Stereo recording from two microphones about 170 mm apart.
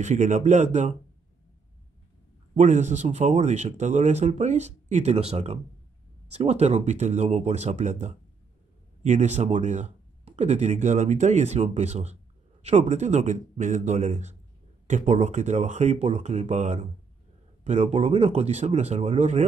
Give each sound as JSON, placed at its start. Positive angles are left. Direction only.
{"t": 0.0, "sound": "speech", "side_deg": -45}
{"t": 2.5, "sound": "speech", "side_deg": -45}